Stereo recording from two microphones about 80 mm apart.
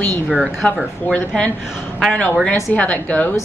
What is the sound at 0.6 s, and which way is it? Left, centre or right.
Speech, centre.